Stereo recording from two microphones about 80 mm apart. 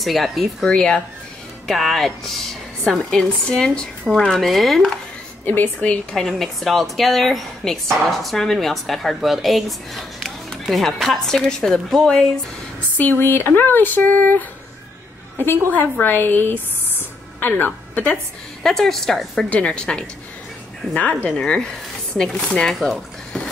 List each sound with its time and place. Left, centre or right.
0.0 s speech: centre
0.7 s speech: centre
5.4 s speech: left
6.1 s speech: centre
12.9 s speech: left
15.7 s speech: left
18.6 s speech: centre
21.3 s speech: centre
22.8 s a sound: centre